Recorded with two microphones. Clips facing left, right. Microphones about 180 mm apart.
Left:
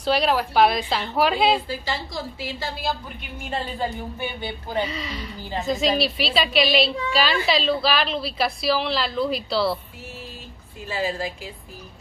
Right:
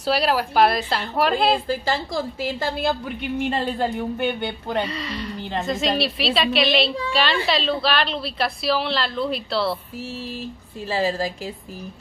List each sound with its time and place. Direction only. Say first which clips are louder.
0.0 s a woman's voice: even; 5° right (ahead or behind)
2.4 s a woman's voice: right 7 dB; 55° right (ahead or behind)
3.3 s a sound: right 4 dB; 70° right (ahead or behind)
4.8 s a woman's voice: right 2 dB; centre (ahead or behind)
10.9 s a woman's voice: right 4 dB; 35° right (ahead or behind)